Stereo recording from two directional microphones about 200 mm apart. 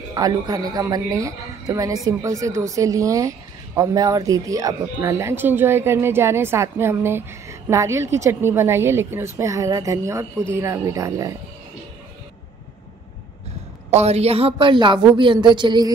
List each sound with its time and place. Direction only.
0.1 s a woman's voice: 20° right (ahead or behind)
13.8 s a woman's voice: 30° right (ahead or behind)